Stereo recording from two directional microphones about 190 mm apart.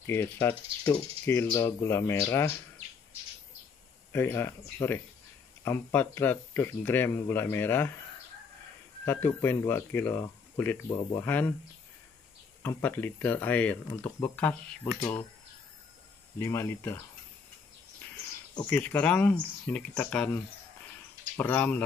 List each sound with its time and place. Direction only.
0.0 s speech: 10° left (ahead or behind)
4.1 s speech: 10° left (ahead or behind)
9.0 s speech: 10° left (ahead or behind)
12.6 s speech: 10° left (ahead or behind)
16.3 s speech: 15° left (ahead or behind)
18.7 s speech: 10° left (ahead or behind)
21.4 s speech: 10° left (ahead or behind)